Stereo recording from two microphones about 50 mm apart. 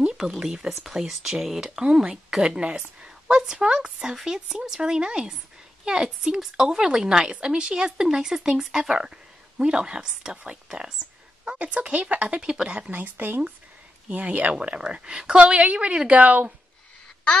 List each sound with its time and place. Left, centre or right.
0.4 s speech: centre
11.4 s a woman's voice: right
12.4 s speech: centre
12.9 s speech: right
14.0 s a woman's voice: right